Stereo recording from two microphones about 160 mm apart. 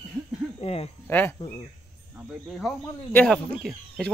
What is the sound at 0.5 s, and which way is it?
Speech, 40° left (ahead or behind).